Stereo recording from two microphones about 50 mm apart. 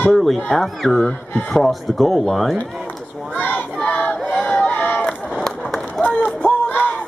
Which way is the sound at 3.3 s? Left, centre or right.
Left.